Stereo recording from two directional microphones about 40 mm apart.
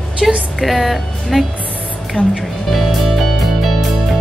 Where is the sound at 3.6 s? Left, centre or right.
Centre.